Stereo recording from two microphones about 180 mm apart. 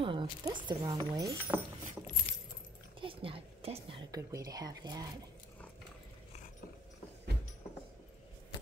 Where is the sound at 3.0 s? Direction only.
30° right (ahead or behind).